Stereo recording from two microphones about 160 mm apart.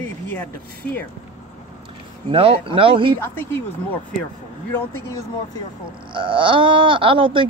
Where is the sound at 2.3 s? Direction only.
35° right (ahead or behind).